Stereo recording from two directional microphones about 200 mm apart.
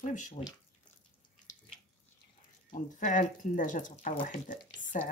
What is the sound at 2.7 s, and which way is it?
Speech, 40° left (ahead or behind).